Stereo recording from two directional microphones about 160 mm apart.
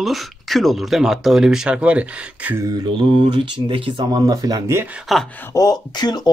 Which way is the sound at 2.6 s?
30° right (ahead or behind).